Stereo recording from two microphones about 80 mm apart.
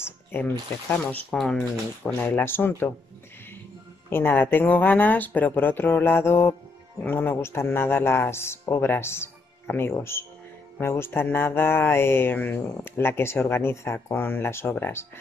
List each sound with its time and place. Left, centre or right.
0.0 s a sound: left
0.9 s speech: centre
2.1 s speech: left
4.1 s speech: left